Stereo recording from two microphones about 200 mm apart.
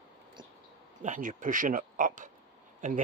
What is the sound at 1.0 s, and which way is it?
Speech, 40° right (ahead or behind).